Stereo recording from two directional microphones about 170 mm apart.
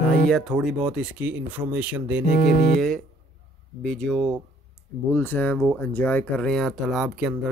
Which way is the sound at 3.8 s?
5° left (ahead or behind).